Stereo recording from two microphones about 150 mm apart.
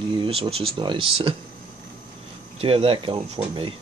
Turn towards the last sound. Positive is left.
turn(degrees=-35)  # may be behind; listen again after turning